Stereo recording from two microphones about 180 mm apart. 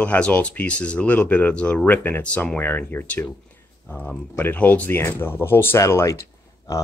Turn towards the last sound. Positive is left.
turn(degrees=15)  # may be behind; listen again after turning